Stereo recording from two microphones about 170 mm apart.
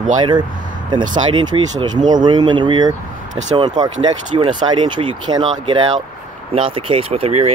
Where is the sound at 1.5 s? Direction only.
30° right (ahead or behind).